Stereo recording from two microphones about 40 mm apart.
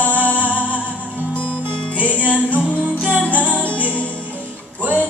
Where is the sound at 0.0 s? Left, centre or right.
Left.